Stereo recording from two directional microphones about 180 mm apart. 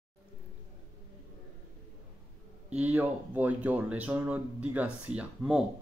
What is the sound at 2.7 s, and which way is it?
Speech, 10° right (ahead or behind).